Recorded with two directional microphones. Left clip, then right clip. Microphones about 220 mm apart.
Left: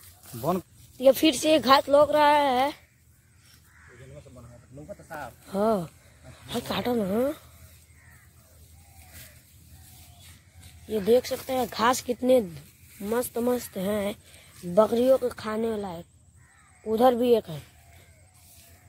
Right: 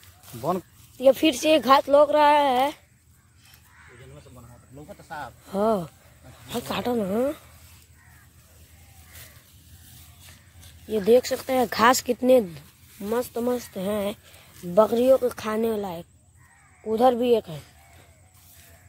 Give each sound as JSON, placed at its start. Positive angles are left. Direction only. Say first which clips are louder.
{"t": 0.4, "sound": "speech", "louder": "right 1 dB", "side_deg": 15}
{"t": 0.9, "sound": "speech", "louder": "right 1 dB", "side_deg": 0}
{"t": 4.8, "sound": "speech", "louder": "right 2 dB", "side_deg": -20}
{"t": 5.5, "sound": "speech", "louder": "right 2 dB", "side_deg": -10}
{"t": 10.9, "sound": "speech", "louder": "right 3 dB", "side_deg": -15}
{"t": 16.8, "sound": "speech", "louder": "right 1 dB", "side_deg": 0}